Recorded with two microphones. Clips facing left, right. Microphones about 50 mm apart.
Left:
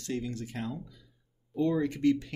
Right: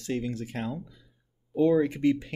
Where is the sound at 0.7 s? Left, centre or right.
Centre.